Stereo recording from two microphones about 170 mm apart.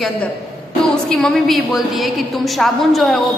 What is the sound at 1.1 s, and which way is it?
A woman's voice, 5° left (ahead or behind).